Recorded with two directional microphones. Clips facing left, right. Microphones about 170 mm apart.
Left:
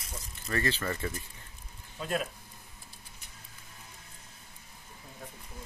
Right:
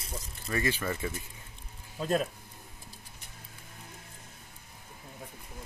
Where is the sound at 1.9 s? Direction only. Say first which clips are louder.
Right 4 dB; 35° right (ahead or behind).